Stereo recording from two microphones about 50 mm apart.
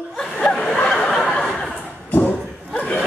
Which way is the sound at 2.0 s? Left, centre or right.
Left.